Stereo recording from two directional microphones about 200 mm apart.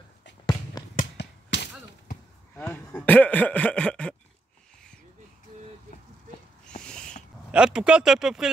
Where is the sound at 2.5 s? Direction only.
10° left (ahead or behind).